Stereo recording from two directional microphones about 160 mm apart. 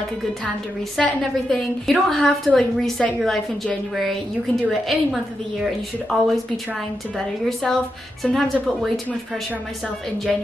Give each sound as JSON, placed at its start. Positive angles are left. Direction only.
{"t": 0.9, "sound": "a woman's voice", "side_deg": 5}